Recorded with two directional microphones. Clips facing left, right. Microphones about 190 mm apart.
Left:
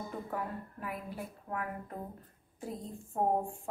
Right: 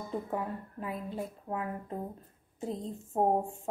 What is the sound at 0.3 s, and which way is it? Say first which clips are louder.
A woman's voice: right 3 dB; 25° right (ahead or behind).